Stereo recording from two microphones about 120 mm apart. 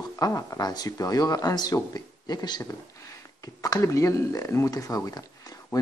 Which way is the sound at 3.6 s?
30° left (ahead or behind).